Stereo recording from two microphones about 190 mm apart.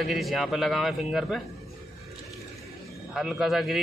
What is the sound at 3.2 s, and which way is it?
Speech, centre (ahead or behind).